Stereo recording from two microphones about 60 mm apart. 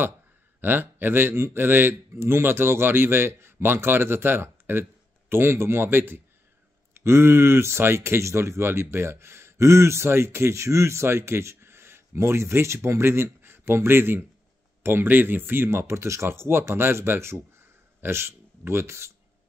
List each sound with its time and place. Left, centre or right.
0.6 s speech: right